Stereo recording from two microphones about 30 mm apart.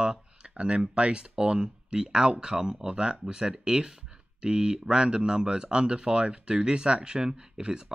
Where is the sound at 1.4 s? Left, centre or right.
Right.